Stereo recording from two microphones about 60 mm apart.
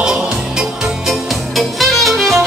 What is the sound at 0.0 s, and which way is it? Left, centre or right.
Music, centre.